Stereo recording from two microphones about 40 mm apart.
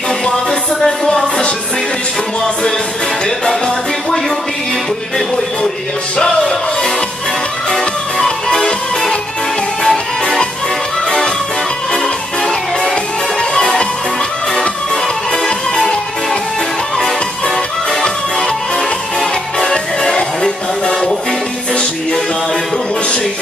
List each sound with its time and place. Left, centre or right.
0.7 s speech: centre
3.4 s music: centre
6.2 s music: centre
9.8 s music: centre
15.4 s music: centre
19.7 s music: centre